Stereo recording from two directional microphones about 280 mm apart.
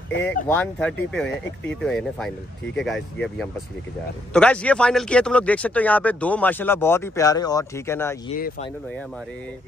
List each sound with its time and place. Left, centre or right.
0.5 s speech: centre
8.4 s speech: left